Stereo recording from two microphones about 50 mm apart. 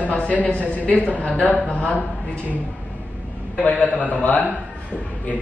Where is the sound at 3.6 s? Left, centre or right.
Left.